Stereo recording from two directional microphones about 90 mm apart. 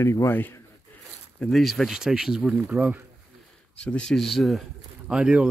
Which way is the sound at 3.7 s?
10° left (ahead or behind).